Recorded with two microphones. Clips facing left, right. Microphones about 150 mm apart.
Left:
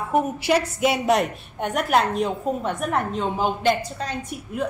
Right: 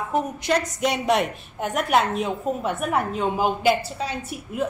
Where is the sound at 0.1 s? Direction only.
10° left (ahead or behind).